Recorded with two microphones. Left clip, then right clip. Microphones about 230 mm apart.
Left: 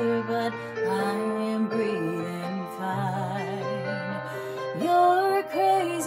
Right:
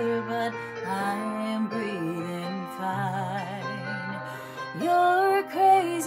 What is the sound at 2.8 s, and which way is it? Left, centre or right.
Music, centre.